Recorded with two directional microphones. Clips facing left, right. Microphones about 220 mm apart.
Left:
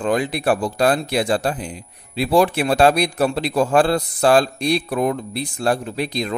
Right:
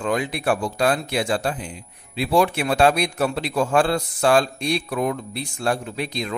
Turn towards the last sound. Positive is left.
turn(degrees=35)  # may be behind; listen again after turning